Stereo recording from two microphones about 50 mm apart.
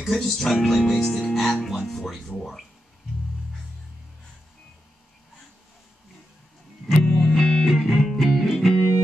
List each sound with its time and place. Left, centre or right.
0.1 s speech: centre
6.9 s music: centre
7.2 s music: centre
7.6 s music: centre